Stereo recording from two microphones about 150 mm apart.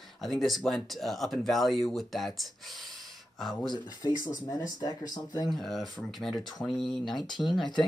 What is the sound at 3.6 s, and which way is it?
Speech, 30° left (ahead or behind).